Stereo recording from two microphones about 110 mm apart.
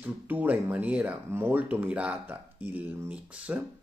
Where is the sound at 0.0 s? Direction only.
15° right (ahead or behind).